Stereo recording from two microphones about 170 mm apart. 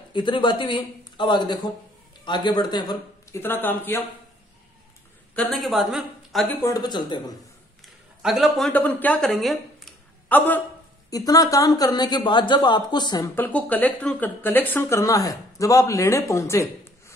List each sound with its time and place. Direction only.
0.1 s speech: 30° left (ahead or behind); by 4.0 s 10° left (ahead or behind)
5.3 s speech: 5° left (ahead or behind)
6.5 s speech: 20° left (ahead or behind)
8.2 s a woman's voice: centre (ahead or behind)
11.1 s speech: 20° left (ahead or behind)
13.3 s speech: 10° left (ahead or behind)